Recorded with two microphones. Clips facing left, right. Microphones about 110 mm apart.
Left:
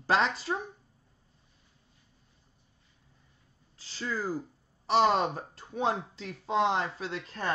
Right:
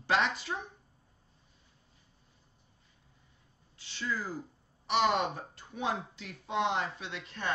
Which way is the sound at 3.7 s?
35° left (ahead or behind).